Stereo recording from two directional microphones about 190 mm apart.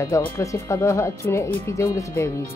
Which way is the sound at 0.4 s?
15° left (ahead or behind).